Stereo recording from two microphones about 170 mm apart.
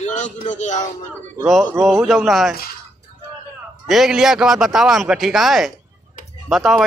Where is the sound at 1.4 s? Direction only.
Centre (ahead or behind).